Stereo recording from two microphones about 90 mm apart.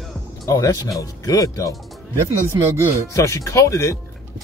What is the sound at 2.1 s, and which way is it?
Speech, 35° right (ahead or behind).